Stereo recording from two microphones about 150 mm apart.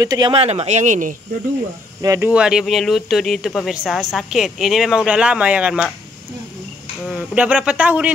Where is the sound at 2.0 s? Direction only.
20° right (ahead or behind).